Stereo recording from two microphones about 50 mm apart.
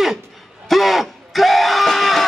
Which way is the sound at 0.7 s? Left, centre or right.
Centre.